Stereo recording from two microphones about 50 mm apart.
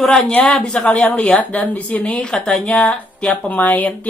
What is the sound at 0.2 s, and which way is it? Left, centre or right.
A woman's voice, left.